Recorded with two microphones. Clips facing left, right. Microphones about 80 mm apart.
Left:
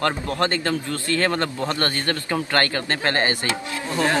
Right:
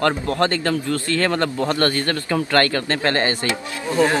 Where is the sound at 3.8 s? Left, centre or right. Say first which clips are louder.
Right 4 dB; right.